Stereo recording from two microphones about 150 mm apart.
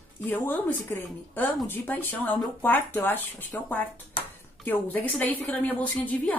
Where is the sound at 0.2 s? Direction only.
10° left (ahead or behind).